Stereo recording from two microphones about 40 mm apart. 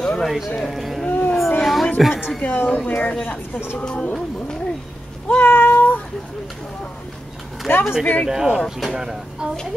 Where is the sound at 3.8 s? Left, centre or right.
Left.